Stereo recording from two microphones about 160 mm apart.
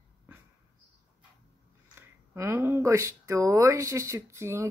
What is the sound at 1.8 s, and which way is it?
Speech, 15° right (ahead or behind).